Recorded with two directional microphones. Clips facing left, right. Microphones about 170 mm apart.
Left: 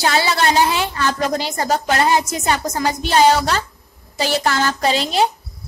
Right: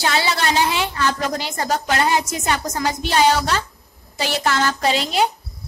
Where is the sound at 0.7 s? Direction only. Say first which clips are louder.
Left 1 dB; 40° left (ahead or behind).